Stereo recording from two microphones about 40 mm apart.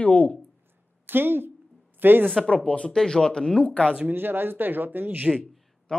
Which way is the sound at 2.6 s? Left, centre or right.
Left.